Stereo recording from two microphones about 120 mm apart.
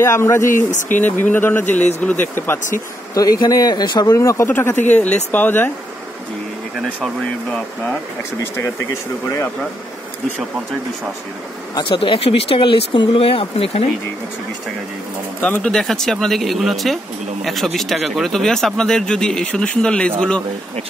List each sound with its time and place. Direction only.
0.0 s speech: 25° left (ahead or behind)
0.5 s speech: 90° left
1.0 s speech: 15° left (ahead or behind)
3.2 s speech: 30° left (ahead or behind)
4.1 s speech: 25° left (ahead or behind)
11.7 s speech: 45° left (ahead or behind)
15.4 s speech: 10° left (ahead or behind)